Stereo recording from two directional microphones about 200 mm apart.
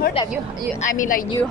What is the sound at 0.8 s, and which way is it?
Speech, 40° left (ahead or behind).